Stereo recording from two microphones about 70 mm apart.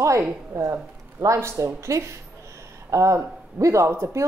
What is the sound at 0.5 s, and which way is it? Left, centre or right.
Speech, right.